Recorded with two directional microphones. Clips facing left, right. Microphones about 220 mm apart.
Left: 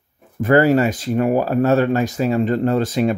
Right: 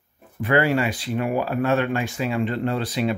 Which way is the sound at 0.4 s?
45° left (ahead or behind).